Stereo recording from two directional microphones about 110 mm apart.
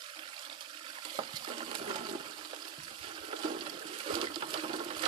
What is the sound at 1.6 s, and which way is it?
Toilet flush, 45° right (ahead or behind).